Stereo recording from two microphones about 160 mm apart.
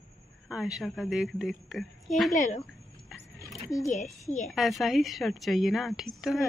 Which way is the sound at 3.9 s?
50° left (ahead or behind).